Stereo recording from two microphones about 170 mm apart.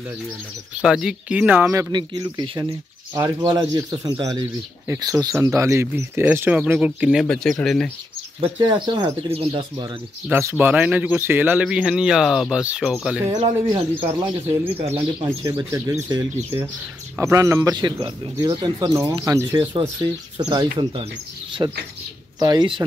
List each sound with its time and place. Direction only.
0.7 s speech: 5° right (ahead or behind)
8.4 s speech: 25° right (ahead or behind)
10.3 s speech: 10° right (ahead or behind)
13.4 s speech: 30° right (ahead or behind)
15.2 s speech: 20° right (ahead or behind)